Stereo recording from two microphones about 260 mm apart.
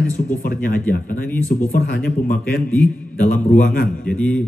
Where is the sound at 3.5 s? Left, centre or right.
Left.